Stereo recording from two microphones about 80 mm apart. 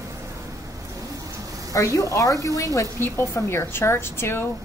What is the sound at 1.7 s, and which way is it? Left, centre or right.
A woman's voice, left.